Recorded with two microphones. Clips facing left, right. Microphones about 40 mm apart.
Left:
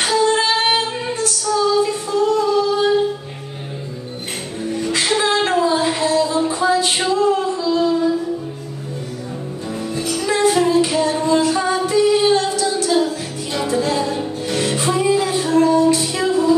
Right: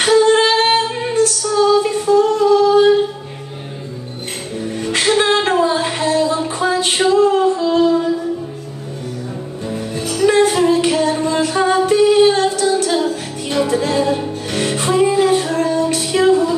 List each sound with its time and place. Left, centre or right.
0.0 s female singing: right
1.8 s singing: right
4.7 s music: right
5.2 s a sound: right
7.1 s singing: right
10.2 s music: right
10.7 s female singing: right
13.7 s music: right